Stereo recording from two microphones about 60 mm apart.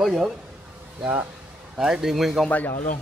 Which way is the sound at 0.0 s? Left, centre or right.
Centre.